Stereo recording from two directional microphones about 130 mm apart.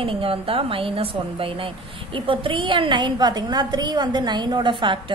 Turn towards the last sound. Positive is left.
turn(degrees=-35)  # may be behind; listen again after turning